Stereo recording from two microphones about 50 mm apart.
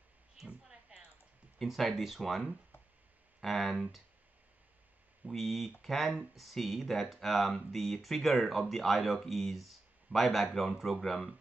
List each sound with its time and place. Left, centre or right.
0.5 s a sound: centre
1.6 s speech: centre
5.3 s speech: centre